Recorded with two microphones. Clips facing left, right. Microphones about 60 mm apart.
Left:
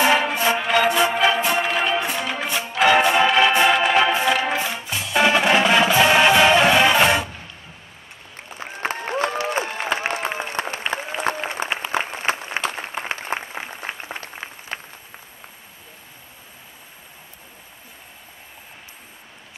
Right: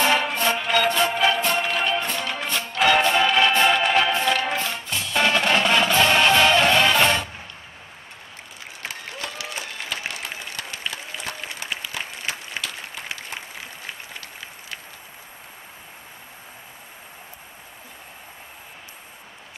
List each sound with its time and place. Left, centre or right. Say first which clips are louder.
0.0 s music: left 3 dB; centre
8.5 s applause: left 9 dB; left